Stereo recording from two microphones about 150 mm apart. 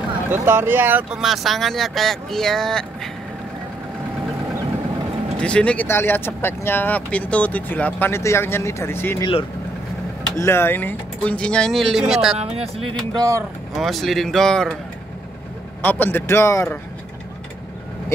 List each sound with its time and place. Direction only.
0.3 s speech: 15° right (ahead or behind)
1.2 s speech: centre (ahead or behind)
5.4 s speech: 5° left (ahead or behind)
9.2 s speech: 35° left (ahead or behind)
10.3 s speech: 15° left (ahead or behind); by 12.4 s 5° right (ahead or behind)
12.4 s speech: 45° right (ahead or behind)
13.7 s speech: centre (ahead or behind)
15.8 s speech: 10° left (ahead or behind)